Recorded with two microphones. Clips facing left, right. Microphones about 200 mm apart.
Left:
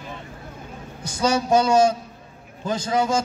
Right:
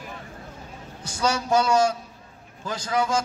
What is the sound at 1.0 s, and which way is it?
A man's voice, 20° left (ahead or behind).